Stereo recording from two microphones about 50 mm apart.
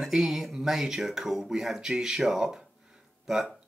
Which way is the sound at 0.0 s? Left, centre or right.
Centre.